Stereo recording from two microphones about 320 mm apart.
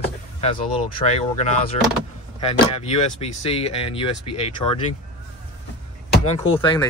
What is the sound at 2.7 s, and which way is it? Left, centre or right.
Speech, centre.